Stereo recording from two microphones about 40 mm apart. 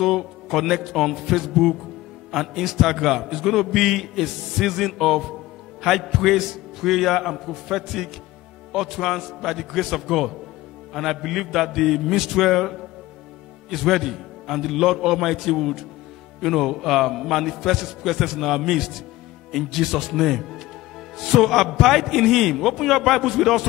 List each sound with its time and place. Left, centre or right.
0.0 s a man's voice: centre